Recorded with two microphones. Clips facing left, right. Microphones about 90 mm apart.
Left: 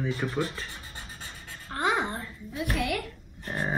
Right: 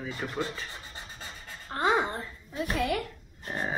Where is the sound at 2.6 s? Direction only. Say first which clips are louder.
Right 1 dB; 35° right (ahead or behind).